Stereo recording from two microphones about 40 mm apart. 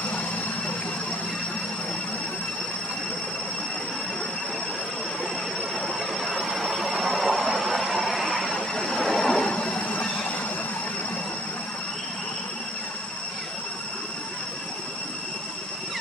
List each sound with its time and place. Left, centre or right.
6.2 s vehicle: centre
8.5 s vehicle: centre
9.5 s train: left
9.8 s train: left